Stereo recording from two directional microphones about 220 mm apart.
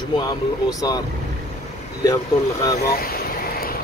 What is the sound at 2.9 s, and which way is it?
Vehicle, 45° left (ahead or behind).